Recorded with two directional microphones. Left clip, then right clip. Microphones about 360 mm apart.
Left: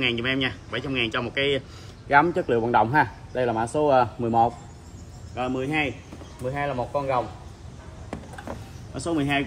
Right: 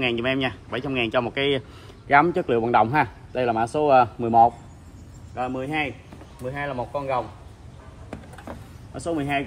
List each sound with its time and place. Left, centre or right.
0.0 s a man's voice: centre
5.3 s speech: centre
8.1 s a sound: centre